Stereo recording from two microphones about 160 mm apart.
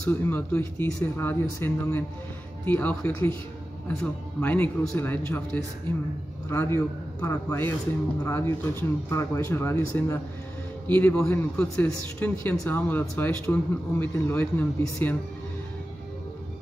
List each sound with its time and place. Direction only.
0.0 s a man's voice: 10° left (ahead or behind)